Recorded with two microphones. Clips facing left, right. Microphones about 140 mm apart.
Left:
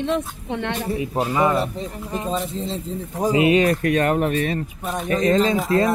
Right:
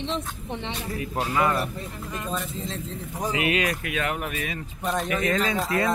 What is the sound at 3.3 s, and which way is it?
Speech, 30° left (ahead or behind).